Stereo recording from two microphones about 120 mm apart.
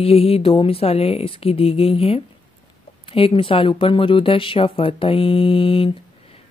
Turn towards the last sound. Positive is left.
turn(degrees=50)  # may be behind; listen again after turning